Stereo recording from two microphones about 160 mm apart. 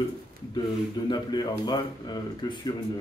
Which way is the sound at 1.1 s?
25° left (ahead or behind).